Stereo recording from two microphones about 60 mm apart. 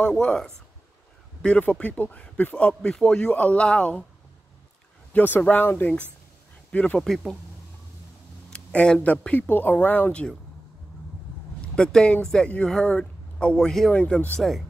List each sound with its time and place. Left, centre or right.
0.0 s speech: centre
1.4 s speech: left
5.1 s speech: left
8.5 s speech: centre
11.6 s speech: centre
12.9 s speech: left
14.4 s speech: centre